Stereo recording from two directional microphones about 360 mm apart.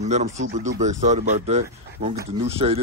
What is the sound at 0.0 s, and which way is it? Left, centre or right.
Speech, centre.